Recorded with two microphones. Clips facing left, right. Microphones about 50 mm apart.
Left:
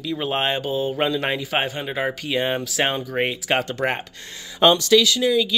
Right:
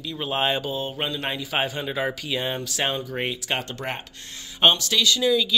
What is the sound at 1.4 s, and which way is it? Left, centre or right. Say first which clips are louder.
Speech: left 2 dB; left.